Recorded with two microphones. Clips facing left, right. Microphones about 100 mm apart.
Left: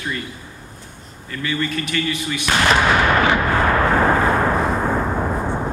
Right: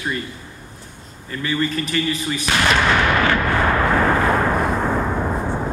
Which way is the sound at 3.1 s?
20° left (ahead or behind).